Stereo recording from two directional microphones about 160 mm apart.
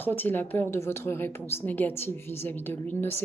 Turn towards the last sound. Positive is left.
turn(degrees=15)  # may be behind; listen again after turning